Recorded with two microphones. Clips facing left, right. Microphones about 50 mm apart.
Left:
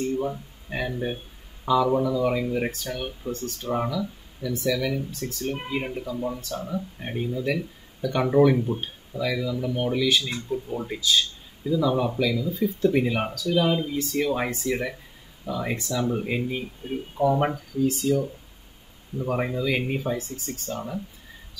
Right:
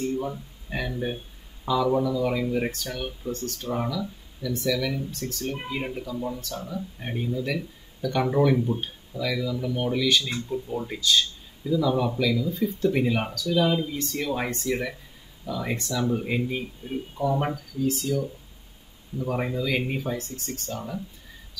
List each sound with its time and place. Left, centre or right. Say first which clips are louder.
0.0 s a sound: left 2 dB; centre
1.7 s speech: left 2 dB; centre
6.5 s speech: left 3 dB; centre
15.7 s speech: right 1 dB; centre
17.2 s speech: left 4 dB; left
17.8 s speech: left 3 dB; centre
19.1 s speech: left 1 dB; centre